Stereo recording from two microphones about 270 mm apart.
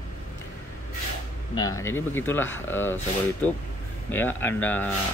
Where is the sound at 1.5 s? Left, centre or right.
Centre.